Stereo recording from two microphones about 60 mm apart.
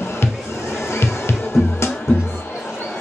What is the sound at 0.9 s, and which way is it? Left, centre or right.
Music, left.